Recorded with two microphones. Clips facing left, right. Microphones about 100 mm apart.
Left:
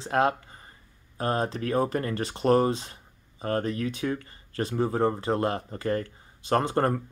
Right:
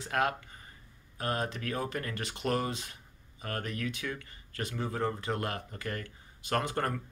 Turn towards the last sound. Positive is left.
turn(degrees=35)  # may be behind; listen again after turning